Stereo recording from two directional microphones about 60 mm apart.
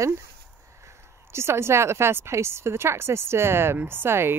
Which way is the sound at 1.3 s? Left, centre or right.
Right.